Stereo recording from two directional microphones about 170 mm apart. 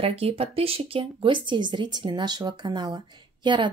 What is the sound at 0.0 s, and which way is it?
Speech, 35° right (ahead or behind).